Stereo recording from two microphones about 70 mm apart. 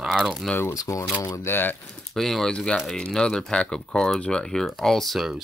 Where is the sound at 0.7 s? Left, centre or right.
Left.